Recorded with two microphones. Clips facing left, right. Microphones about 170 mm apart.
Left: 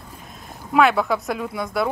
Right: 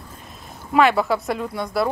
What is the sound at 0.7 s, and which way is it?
Speech, centre (ahead or behind).